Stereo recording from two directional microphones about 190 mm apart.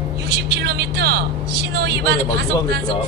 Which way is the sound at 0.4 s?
60° right (ahead or behind).